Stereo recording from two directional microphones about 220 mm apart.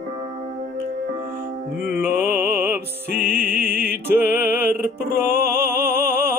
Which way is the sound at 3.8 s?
45° right (ahead or behind).